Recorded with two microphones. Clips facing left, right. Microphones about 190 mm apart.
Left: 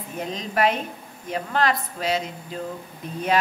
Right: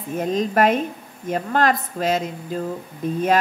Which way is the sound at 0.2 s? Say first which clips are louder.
Right 5 dB; 45° right (ahead or behind).